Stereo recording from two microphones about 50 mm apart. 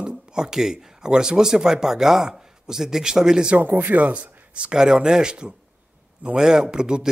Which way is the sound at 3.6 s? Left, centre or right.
Right.